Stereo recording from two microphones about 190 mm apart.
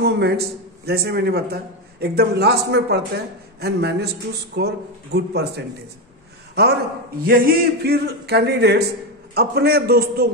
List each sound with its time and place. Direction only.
0.0 s a man's voice: 60° right (ahead or behind)
6.6 s a man's voice: 60° right (ahead or behind)